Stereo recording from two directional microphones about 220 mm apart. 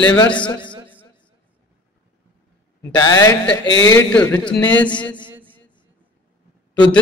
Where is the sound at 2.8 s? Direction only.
20° left (ahead or behind).